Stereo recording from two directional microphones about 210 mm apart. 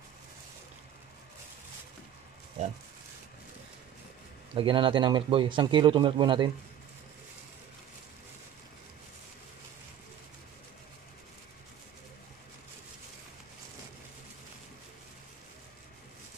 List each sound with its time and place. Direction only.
4.6 s speech: 25° right (ahead or behind)